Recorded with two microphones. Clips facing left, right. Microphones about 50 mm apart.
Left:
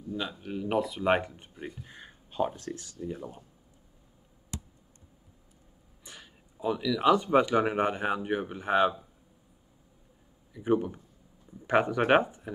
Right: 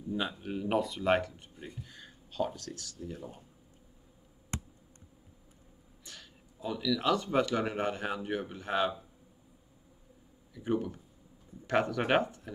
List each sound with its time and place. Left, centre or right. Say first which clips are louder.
0.1 s speech: even; centre
1.0 s speech: left 2 dB; left
4.5 s computer keyboard: right 1 dB; right
6.0 s speech: left 2 dB; left
10.5 s speech: left 5 dB; centre